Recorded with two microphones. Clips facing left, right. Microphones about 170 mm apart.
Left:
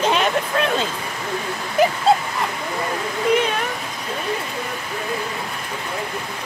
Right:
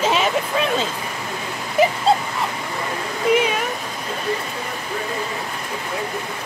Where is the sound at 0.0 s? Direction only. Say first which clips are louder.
Even; centre (ahead or behind).